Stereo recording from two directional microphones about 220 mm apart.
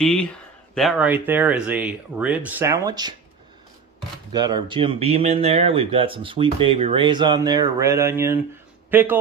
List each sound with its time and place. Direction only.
0.0 s speech: 5° left (ahead or behind); by 3.2 s 20° right (ahead or behind)
4.3 s speech: 20° right (ahead or behind)